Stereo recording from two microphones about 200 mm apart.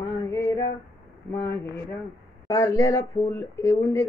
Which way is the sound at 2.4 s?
15° left (ahead or behind).